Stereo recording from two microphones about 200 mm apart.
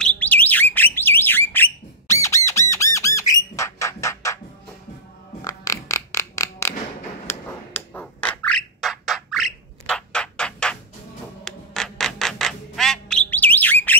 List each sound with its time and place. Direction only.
0.0 s bird: 5° left (ahead or behind)
2.7 s squawk: 15° left (ahead or behind)
5.4 s a sound: 15° left (ahead or behind)
11.4 s squawk: centre (ahead or behind)